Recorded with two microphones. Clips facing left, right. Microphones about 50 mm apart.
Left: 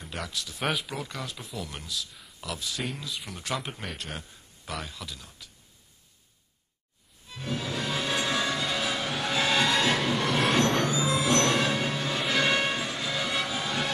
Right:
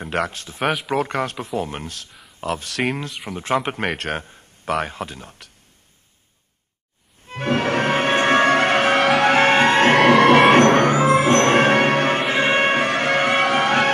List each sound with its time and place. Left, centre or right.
0.0 s a sound: right
0.3 s speech: right
0.8 s speech: right
3.3 s speech: right
3.5 s speech: right
7.2 s music: right
10.0 s music: right
12.3 s music: right